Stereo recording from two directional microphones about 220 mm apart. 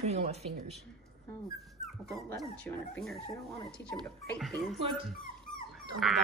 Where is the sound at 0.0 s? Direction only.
30° right (ahead or behind).